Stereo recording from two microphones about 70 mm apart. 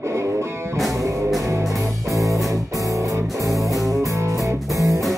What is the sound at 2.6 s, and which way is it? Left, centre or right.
Music, right.